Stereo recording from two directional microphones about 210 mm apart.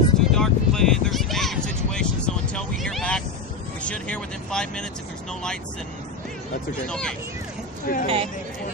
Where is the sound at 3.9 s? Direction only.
5° left (ahead or behind).